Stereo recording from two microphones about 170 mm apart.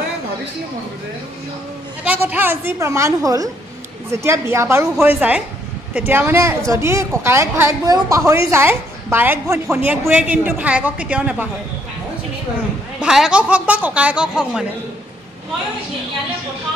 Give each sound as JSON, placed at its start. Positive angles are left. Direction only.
{"t": 2.0, "sound": "a woman's voice", "side_deg": -10}
{"t": 13.0, "sound": "speech", "side_deg": -5}